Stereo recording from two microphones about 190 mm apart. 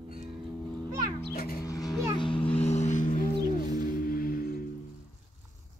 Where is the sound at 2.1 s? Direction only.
25° left (ahead or behind); by 4.6 s 50° left (ahead or behind).